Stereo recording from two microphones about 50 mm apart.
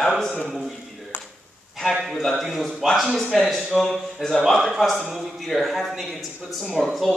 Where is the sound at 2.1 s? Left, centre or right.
Centre.